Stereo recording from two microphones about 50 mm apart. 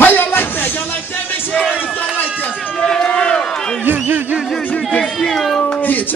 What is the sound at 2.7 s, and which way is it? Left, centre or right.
Run, centre.